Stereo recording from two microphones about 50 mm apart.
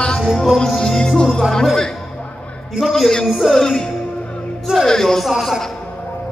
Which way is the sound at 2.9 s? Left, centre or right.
Centre.